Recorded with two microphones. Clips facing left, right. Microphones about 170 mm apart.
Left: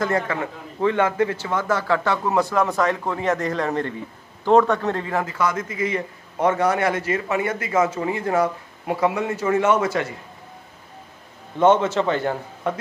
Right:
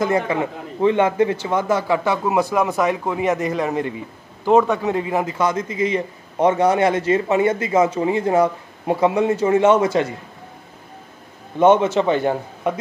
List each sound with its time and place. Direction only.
0.0 s a man's voice: 15° right (ahead or behind)
11.5 s a man's voice: 15° right (ahead or behind)